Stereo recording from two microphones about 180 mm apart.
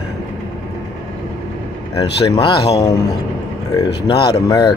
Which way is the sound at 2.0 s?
20° left (ahead or behind).